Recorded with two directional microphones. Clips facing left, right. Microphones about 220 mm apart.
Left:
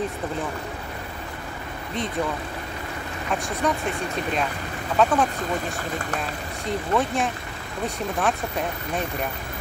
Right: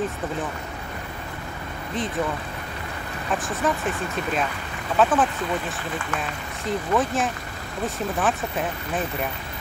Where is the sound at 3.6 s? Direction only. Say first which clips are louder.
Even; centre (ahead or behind).